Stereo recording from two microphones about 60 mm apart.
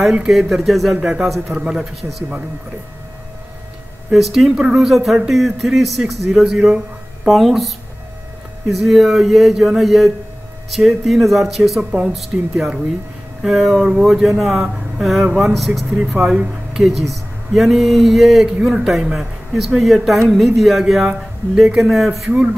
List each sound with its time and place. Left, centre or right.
0.3 s speech: centre
0.9 s speech: centre
4.1 s speech: centre
8.7 s speech: centre
16.3 s speech: centre
17.1 s speech: centre
22.3 s a man's voice: centre